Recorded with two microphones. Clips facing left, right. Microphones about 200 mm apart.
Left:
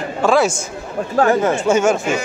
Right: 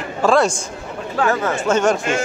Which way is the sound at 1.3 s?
15° left (ahead or behind).